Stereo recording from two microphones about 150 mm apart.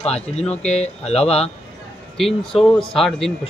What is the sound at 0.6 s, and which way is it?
Speech, 45° left (ahead or behind).